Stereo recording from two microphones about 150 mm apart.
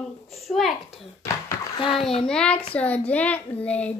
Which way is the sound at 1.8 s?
35° left (ahead or behind).